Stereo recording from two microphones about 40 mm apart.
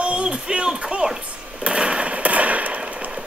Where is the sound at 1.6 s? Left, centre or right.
Right.